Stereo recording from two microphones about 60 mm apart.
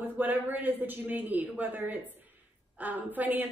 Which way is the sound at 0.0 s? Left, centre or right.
Right.